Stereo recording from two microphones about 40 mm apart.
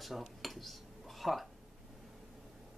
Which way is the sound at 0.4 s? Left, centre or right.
Centre.